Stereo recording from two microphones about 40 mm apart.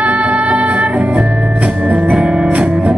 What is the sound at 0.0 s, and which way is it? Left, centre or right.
Music, right.